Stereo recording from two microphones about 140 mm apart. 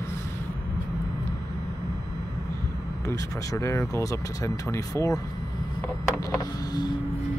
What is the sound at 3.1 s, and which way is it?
Speech, 20° left (ahead or behind).